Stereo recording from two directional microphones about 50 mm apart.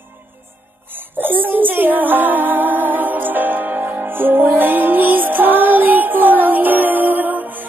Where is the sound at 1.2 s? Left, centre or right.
Right.